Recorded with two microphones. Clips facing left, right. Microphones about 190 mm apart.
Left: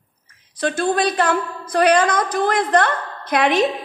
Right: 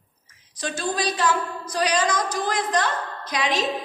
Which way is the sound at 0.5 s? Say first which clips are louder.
Left 7 dB; 55° left (ahead or behind).